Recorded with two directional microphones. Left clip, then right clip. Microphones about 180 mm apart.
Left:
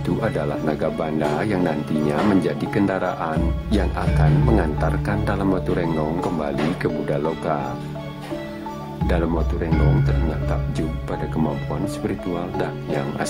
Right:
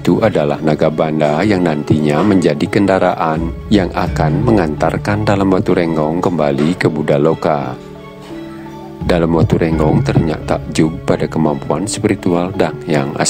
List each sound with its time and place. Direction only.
0.0 s speech: 35° right (ahead or behind)
9.0 s speech: 40° right (ahead or behind)